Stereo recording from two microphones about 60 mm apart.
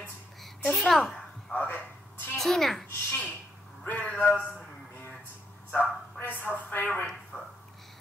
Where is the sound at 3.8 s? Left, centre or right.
Left.